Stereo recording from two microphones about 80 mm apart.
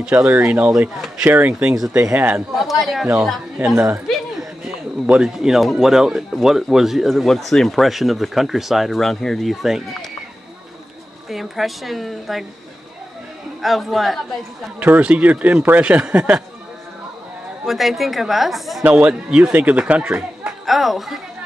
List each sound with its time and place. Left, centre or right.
0.0 s a man's voice: centre
0.3 s a man's voice: right
1.5 s a man's voice: centre
2.1 s a man's voice: right
2.5 s speech: centre
3.6 s a man's voice: right
5.0 s speech: centre
11.2 s speech: centre
13.6 s speech: centre
14.9 s a man's voice: centre
17.6 s speech: centre
18.9 s a man's voice: centre
20.6 s speech: centre